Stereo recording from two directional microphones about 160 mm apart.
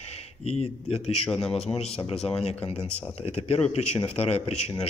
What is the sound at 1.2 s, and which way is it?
Speech, 5° left (ahead or behind).